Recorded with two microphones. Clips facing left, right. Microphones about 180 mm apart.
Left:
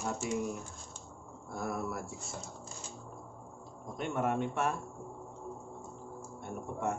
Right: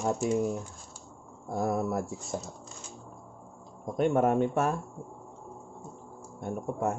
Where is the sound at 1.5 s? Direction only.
40° right (ahead or behind).